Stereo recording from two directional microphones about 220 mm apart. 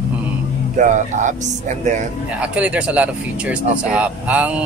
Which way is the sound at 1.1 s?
35° right (ahead or behind).